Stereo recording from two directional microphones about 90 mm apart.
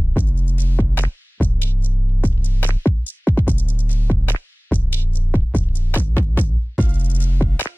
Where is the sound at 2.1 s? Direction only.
20° left (ahead or behind).